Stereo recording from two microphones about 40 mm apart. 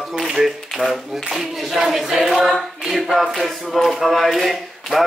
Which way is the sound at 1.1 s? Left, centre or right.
Centre.